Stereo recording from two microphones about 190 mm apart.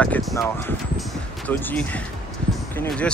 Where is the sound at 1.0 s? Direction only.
10° left (ahead or behind).